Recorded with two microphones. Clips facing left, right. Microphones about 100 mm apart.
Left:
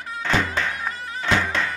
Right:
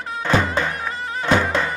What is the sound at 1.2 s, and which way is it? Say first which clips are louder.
Music: right 4 dB; 15° right (ahead or behind).